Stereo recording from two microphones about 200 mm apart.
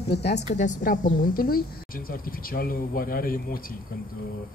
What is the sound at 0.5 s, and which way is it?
A man's voice, 40° left (ahead or behind).